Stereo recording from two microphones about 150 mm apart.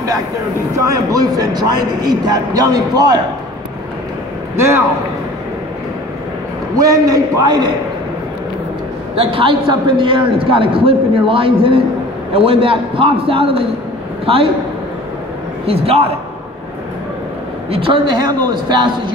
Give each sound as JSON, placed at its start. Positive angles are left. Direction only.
{"t": 0.7, "sound": "a man's voice", "side_deg": -25}
{"t": 4.6, "sound": "a man's voice", "side_deg": -20}
{"t": 6.8, "sound": "a man's voice", "side_deg": -25}
{"t": 9.1, "sound": "a man's voice", "side_deg": -35}
{"t": 15.6, "sound": "a man's voice", "side_deg": -40}
{"t": 17.6, "sound": "a man's voice", "side_deg": -35}